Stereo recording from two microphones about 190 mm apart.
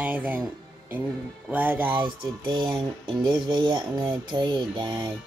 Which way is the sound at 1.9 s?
25° right (ahead or behind).